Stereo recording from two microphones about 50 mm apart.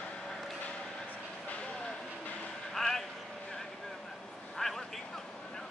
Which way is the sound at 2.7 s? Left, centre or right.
Centre.